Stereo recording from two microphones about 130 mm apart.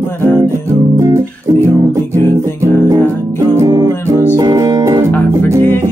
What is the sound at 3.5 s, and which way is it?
Music, 30° right (ahead or behind).